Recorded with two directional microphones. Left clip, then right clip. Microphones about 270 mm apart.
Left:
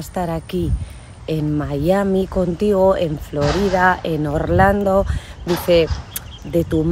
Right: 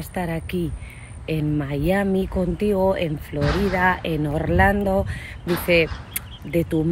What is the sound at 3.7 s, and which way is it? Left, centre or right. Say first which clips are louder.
Speech: left 5 dB; centre.